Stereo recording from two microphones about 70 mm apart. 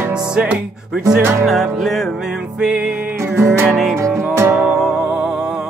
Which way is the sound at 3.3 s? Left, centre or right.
Right.